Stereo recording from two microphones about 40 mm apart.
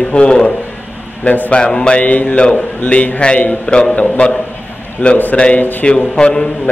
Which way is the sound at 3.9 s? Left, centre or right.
Left.